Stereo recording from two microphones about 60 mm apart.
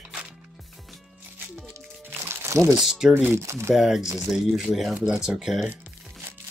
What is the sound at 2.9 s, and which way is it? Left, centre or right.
Speech, centre.